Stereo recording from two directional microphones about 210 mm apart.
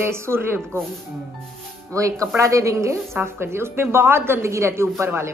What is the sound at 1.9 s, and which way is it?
A man's voice, 15° right (ahead or behind).